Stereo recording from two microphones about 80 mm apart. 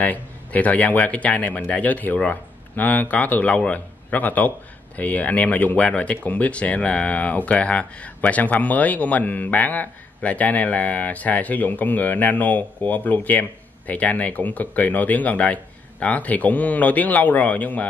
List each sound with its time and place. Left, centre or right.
0.0 s a man's voice: centre